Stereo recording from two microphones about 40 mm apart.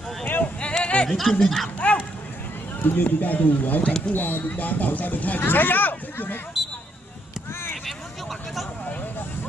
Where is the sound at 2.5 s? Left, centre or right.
Left.